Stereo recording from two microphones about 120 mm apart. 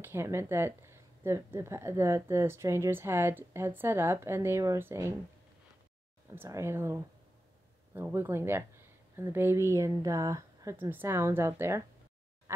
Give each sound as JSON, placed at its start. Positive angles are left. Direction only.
{"t": 0.0, "sound": "speech", "side_deg": -20}
{"t": 6.3, "sound": "speech", "side_deg": -20}